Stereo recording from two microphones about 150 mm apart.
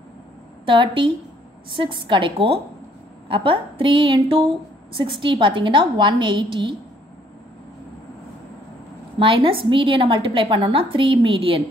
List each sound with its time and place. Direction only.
0.7 s a woman's voice: 35° right (ahead or behind)
9.2 s a woman's voice: 35° right (ahead or behind)